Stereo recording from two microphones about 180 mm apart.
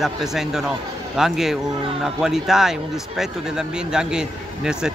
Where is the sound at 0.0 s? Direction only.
Centre (ahead or behind).